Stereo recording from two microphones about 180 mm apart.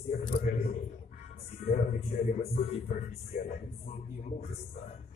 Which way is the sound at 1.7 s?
40° left (ahead or behind).